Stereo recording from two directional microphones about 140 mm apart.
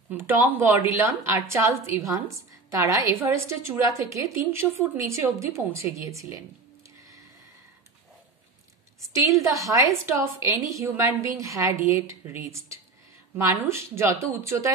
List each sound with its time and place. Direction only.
0.1 s a woman's voice: 15° right (ahead or behind)
9.1 s a woman's voice: 20° right (ahead or behind)